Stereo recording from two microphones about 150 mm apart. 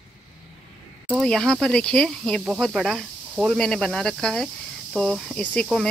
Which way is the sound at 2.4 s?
5° right (ahead or behind).